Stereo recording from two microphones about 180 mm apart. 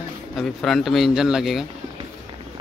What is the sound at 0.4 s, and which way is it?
Speech, centre (ahead or behind).